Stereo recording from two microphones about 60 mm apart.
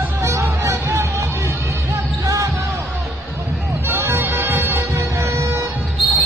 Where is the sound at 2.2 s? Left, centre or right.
Right.